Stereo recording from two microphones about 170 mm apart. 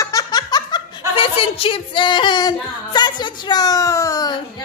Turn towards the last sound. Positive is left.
turn(degrees=20)  # may be behind; listen again after turning